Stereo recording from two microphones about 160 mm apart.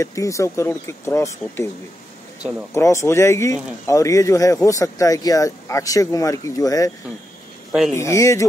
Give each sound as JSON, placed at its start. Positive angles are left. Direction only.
{"t": 0.0, "sound": "speech", "side_deg": 20}
{"t": 2.7, "sound": "speech", "side_deg": 20}
{"t": 7.9, "sound": "speech", "side_deg": 20}